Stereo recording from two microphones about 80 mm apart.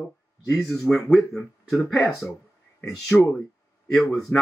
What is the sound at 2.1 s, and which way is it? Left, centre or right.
Speech, left.